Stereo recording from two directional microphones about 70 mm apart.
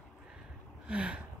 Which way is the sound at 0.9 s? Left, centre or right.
Centre.